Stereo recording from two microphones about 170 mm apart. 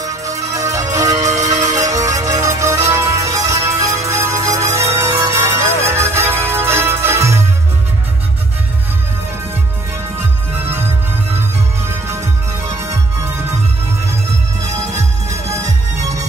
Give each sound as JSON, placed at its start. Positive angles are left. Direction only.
{"t": 0.0, "sound": "music", "side_deg": -20}
{"t": 12.6, "sound": "music", "side_deg": -20}